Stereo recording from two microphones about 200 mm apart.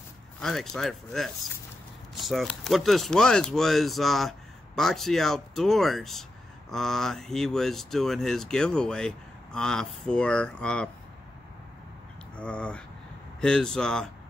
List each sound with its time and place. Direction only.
0.4 s speech: centre (ahead or behind)
12.4 s speech: 5° left (ahead or behind)